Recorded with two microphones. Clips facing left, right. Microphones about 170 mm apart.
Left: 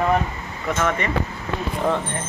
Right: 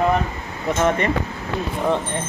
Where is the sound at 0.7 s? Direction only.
30° right (ahead or behind).